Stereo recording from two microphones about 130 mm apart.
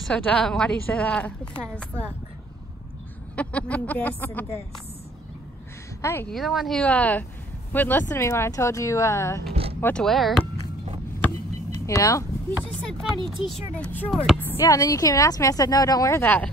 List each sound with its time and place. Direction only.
0.0 s a woman's voice: 10° left (ahead or behind)
3.3 s a woman's voice: 10° left (ahead or behind)
6.2 s a woman's voice: centre (ahead or behind); by 9.4 s 20° left (ahead or behind)
9.5 s a sound: 50° right (ahead or behind)
9.8 s speech: 15° left (ahead or behind)
10.0 s speech: centre (ahead or behind)
11.8 s a woman's voice: 25° left (ahead or behind)
12.9 s speech: centre (ahead or behind)
13.9 s a woman's voice: 10° left (ahead or behind)